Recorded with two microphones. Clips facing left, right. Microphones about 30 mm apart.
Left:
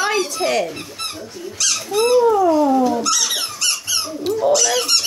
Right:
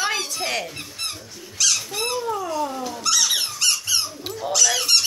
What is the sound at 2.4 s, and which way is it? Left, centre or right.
Speech, centre.